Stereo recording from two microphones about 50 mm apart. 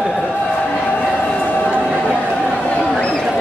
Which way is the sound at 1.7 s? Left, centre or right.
Right.